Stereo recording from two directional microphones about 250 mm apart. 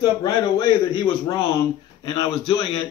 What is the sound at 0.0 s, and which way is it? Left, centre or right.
A man's voice, centre.